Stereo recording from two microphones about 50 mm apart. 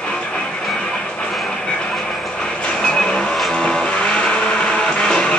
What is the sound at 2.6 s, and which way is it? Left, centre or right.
Vehicle, centre.